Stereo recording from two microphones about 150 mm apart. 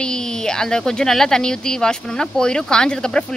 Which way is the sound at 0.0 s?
5° left (ahead or behind).